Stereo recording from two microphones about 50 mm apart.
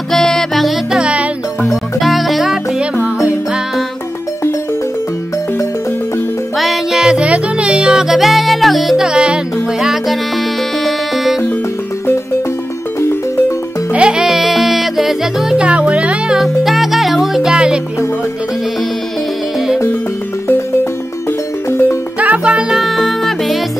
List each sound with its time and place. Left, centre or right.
0.1 s music: centre
0.9 s music: centre
2.0 s music: centre
6.6 s music: centre
7.0 s music: centre
7.2 s music: right; by 8.9 s centre
8.9 s music: centre
9.8 s music: centre
13.9 s music: centre
14.2 s music: centre
15.5 s music: right
16.3 s music: centre
22.2 s music: right
22.7 s music: centre